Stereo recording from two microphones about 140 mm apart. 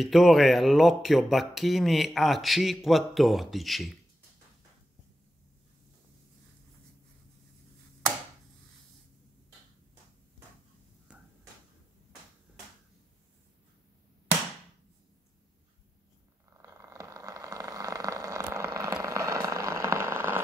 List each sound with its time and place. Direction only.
0.0 s speech: centre (ahead or behind)
11.1 s finger snapping: 10° right (ahead or behind)
16.6 s a sound: 20° right (ahead or behind)